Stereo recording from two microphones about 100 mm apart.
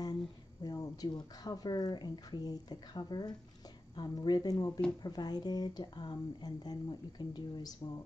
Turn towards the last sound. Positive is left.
turn(degrees=45)  # may be behind; listen again after turning